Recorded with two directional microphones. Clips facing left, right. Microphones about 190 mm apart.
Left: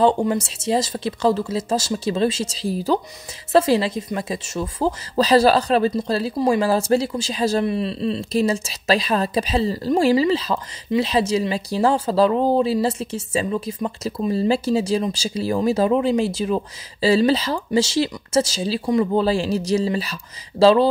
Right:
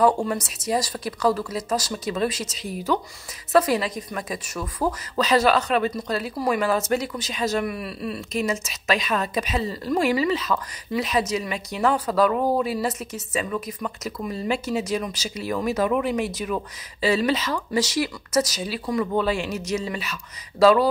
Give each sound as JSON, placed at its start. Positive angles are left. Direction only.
{"t": 0.0, "sound": "a woman's voice", "side_deg": 25}